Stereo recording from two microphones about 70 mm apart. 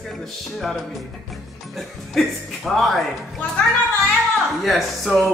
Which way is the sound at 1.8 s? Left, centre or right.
Centre.